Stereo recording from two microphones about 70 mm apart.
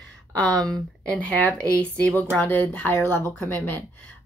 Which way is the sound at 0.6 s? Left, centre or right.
Centre.